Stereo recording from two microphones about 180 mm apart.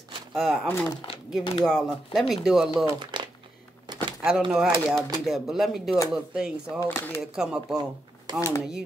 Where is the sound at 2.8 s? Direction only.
25° right (ahead or behind).